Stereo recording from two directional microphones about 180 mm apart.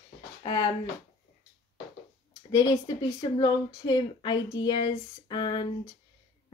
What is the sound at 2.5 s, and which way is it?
Speech, 25° left (ahead or behind).